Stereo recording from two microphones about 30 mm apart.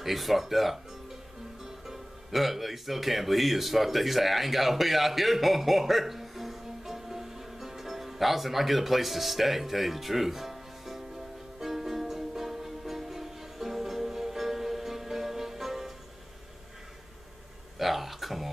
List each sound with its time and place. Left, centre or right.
0.0 s speech: centre
11.6 s music: centre
17.7 s a sound: centre